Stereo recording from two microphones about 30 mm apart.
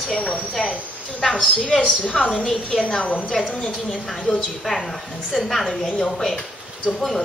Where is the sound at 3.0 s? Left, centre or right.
Left.